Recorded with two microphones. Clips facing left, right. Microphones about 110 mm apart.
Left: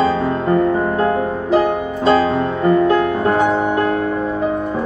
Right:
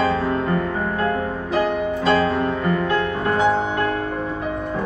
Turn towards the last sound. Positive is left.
turn(degrees=30)  # may be behind; listen again after turning